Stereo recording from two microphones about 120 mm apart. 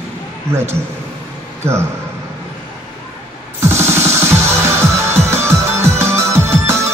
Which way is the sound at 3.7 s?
20° right (ahead or behind).